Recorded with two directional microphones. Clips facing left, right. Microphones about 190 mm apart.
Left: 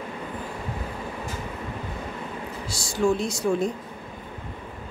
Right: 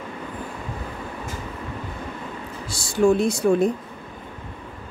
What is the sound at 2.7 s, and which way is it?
A woman's voice, 55° right (ahead or behind).